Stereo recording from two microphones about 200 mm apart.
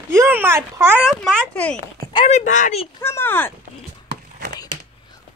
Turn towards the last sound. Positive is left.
turn(degrees=-55)  # may be behind; listen again after turning